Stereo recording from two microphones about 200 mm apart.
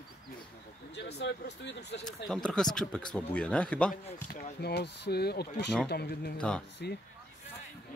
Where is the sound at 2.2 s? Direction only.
5° left (ahead or behind).